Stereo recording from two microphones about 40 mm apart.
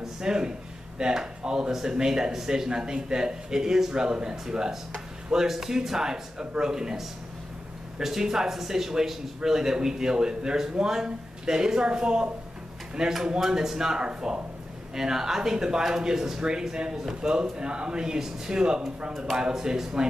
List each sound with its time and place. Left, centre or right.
0.0 s a sound: centre
0.9 s a man's voice: centre
8.0 s a man's voice: centre